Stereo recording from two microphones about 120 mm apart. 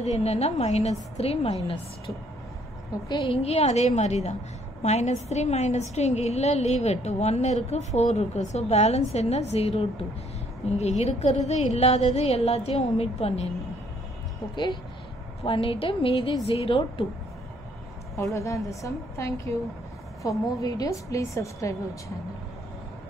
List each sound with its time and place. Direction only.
0.0 s a woman's voice: 65° left (ahead or behind)
3.1 s speech: 40° left (ahead or behind)
3.4 s a woman's voice: 65° left (ahead or behind)
14.5 s a woman's voice: 40° left (ahead or behind)
18.3 s a woman's voice: 25° left (ahead or behind)